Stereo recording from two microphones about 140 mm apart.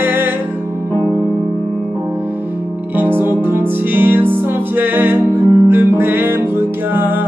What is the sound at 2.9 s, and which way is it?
Music, 15° right (ahead or behind).